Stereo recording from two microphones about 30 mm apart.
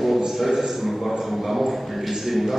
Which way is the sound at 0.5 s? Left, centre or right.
Centre.